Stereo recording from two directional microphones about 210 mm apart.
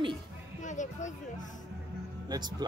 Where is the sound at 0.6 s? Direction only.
35° left (ahead or behind).